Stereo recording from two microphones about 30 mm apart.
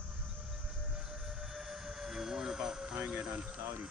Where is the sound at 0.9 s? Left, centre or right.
Centre.